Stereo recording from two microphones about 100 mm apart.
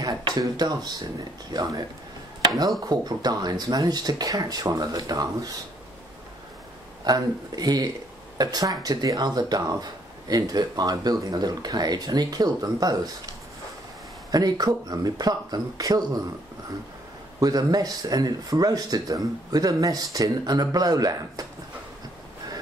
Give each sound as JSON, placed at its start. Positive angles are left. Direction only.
{"t": 0.0, "sound": "speech", "side_deg": -40}
{"t": 7.1, "sound": "speech", "side_deg": -40}
{"t": 14.3, "sound": "speech", "side_deg": -40}
{"t": 17.4, "sound": "speech", "side_deg": -40}